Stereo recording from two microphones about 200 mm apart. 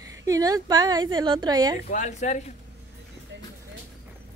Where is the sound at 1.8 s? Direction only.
35° left (ahead or behind).